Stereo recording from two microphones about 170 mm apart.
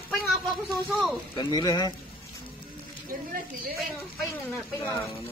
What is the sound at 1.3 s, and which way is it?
Speech, 25° left (ahead or behind).